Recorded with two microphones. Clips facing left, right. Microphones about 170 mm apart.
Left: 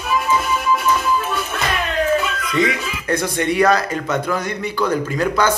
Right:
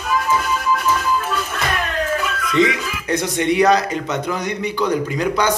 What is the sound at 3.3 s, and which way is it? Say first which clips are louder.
A man's voice: right 2 dB; 20° right (ahead or behind).